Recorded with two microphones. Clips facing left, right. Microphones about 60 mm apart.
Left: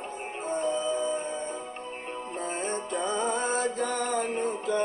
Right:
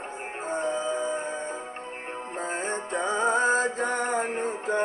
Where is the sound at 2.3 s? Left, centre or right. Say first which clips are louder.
Right 3 dB; right.